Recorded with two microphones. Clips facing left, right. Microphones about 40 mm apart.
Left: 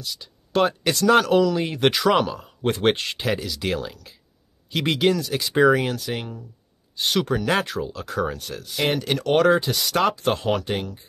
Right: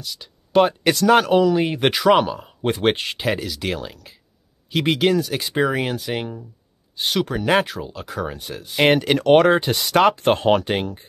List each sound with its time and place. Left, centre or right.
0.2 s a sound: centre
1.0 s speech: centre
5.1 s speech: centre
5.5 s speech: centre
7.1 s speech: centre
8.7 s speech: right